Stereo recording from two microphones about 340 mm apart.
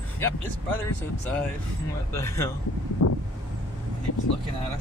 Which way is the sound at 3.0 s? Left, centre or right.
Left.